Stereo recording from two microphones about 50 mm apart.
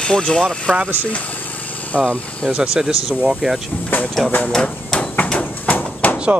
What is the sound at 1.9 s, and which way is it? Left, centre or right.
Speech, left.